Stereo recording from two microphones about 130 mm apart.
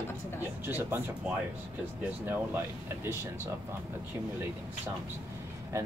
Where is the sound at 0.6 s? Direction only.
15° right (ahead or behind).